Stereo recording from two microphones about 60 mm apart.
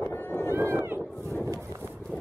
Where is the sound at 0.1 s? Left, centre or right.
Left.